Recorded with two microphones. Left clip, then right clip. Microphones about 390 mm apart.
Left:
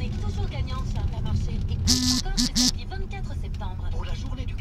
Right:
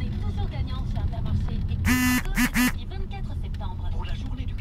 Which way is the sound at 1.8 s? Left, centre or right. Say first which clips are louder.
Even; right.